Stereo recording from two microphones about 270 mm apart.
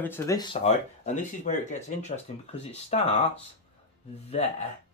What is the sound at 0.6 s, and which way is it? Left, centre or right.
Speech, left.